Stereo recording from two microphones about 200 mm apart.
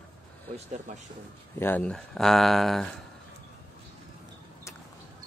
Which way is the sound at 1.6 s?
5° left (ahead or behind).